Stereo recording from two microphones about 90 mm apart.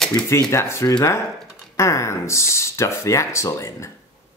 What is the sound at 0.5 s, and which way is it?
Speech, 30° left (ahead or behind).